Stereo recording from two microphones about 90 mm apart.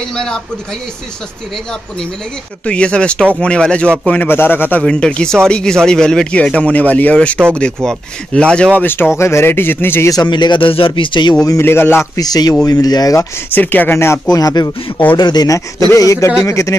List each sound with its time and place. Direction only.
0.1 s speech: 10° left (ahead or behind)
2.6 s a man's voice: 10° left (ahead or behind)
4.8 s speech: 10° left (ahead or behind)
8.8 s a man's voice: 25° left (ahead or behind)
10.2 s speech: 60° left (ahead or behind)
11.6 s a man's voice: 25° left (ahead or behind)
12.2 s speech: 45° left (ahead or behind)
13.5 s a man's voice: 20° left (ahead or behind)
14.3 s speech: 45° left (ahead or behind)